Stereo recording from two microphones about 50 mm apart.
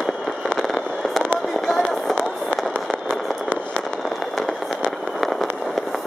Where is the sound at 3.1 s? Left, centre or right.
Left.